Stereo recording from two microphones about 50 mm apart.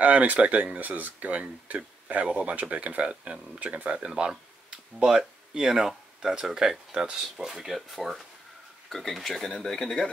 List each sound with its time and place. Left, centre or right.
0.0 s speech: right; by 10.0 s centre